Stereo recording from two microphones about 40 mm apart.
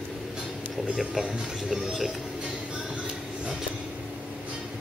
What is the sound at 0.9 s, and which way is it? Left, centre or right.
Music, centre.